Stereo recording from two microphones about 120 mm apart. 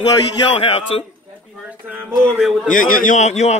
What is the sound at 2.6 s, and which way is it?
Speech, 90° left.